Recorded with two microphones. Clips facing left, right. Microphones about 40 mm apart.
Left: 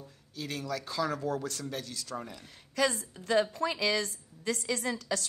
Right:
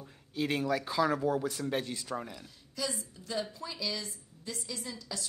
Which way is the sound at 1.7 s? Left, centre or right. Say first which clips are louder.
Right 5 dB; right.